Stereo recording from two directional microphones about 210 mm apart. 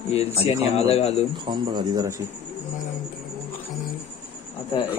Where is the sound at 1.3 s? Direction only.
20° right (ahead or behind).